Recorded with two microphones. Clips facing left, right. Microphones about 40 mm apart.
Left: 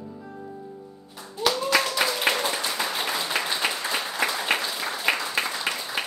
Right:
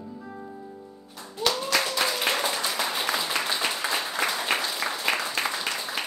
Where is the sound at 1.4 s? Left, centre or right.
Centre.